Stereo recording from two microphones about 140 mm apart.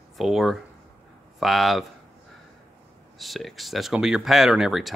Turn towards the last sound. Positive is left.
turn(degrees=0)  # may be behind; listen again after turning